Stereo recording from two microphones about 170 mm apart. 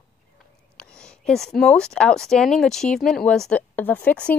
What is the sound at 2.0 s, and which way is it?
Speech, 5° left (ahead or behind).